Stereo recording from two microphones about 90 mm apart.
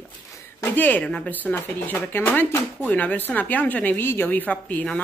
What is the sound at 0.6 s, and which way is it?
Speech, 20° left (ahead or behind).